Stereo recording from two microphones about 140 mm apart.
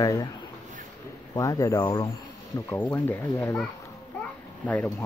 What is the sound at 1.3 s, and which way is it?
Speech, 25° left (ahead or behind).